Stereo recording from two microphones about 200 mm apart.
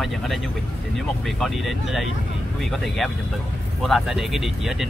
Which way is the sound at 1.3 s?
Centre (ahead or behind).